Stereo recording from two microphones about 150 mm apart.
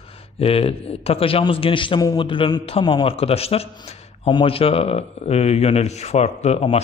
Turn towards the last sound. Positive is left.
turn(degrees=40)  # may be behind; listen again after turning